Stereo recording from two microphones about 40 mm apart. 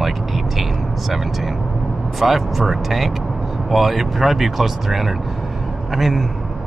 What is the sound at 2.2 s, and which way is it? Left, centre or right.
Speech, centre.